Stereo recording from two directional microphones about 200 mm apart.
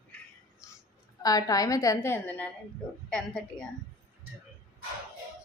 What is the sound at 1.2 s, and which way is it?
A woman's voice, 20° left (ahead or behind).